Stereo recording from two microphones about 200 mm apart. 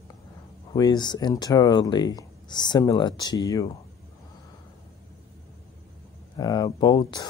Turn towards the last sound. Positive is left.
turn(degrees=20)  # may be behind; listen again after turning